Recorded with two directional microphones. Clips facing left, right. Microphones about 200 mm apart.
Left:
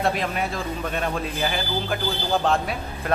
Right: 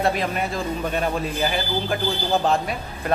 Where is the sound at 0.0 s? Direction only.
Centre (ahead or behind).